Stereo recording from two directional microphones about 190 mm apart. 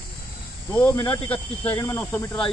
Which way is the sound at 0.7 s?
10° left (ahead or behind).